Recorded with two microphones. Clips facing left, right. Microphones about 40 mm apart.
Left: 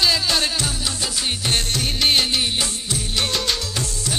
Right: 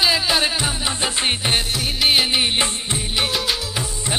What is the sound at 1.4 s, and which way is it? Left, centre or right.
Music of bollywood, centre.